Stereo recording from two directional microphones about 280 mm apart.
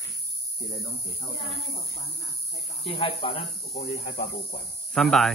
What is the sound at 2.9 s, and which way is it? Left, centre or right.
Speech, centre.